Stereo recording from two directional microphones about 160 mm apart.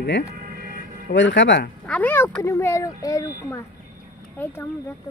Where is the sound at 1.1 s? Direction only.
90° left.